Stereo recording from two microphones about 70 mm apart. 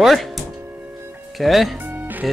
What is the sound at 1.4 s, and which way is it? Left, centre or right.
Speech, centre.